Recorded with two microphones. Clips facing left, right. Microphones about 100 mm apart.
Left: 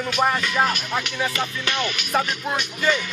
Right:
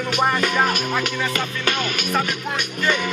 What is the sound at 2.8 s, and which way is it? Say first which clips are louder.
Speech: right 1 dB; 55° right (ahead or behind).